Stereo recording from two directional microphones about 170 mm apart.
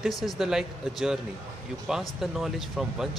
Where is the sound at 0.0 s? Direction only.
Centre (ahead or behind).